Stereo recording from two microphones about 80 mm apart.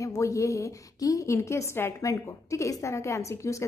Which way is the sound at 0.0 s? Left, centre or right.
Left.